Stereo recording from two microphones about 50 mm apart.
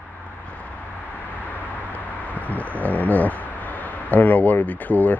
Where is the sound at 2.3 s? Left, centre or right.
Left.